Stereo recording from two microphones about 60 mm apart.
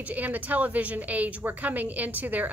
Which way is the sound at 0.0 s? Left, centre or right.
Right.